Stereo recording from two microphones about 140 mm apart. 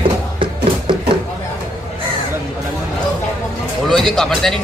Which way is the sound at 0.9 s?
35° right (ahead or behind).